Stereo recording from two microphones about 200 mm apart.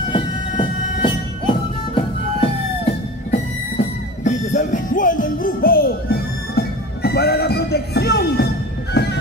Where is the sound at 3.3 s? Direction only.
40° left (ahead or behind).